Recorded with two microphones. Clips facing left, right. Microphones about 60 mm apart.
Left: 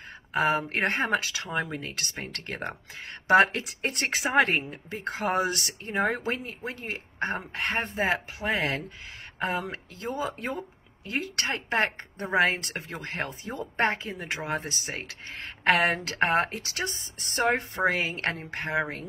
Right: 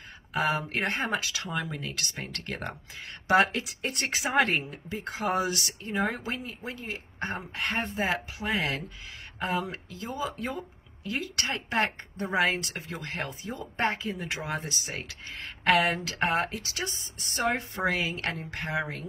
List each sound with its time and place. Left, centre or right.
0.3 s speech: left
1.3 s speech: left
4.3 s a woman's voice: left
4.8 s speech: left
13.5 s speech: left
13.9 s speech: left
17.8 s speech: left